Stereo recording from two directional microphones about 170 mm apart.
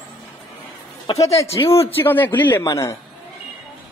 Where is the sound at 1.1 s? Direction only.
20° left (ahead or behind).